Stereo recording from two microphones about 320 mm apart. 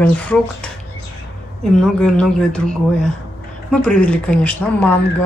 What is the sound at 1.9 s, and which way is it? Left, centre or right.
A woman's voice, centre.